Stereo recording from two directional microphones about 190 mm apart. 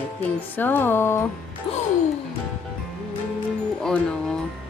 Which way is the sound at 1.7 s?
30° left (ahead or behind).